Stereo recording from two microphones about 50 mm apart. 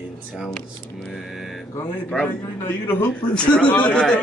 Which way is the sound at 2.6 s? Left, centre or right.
Left.